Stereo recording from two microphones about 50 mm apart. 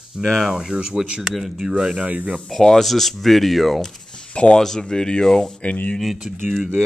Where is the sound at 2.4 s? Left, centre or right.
Centre.